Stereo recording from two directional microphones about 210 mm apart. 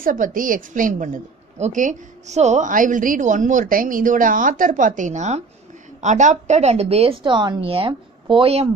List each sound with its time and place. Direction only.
0.0 s a woman's voice: 40° right (ahead or behind)